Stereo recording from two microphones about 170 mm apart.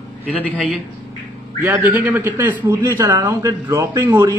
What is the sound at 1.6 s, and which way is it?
A man's voice, 15° right (ahead or behind).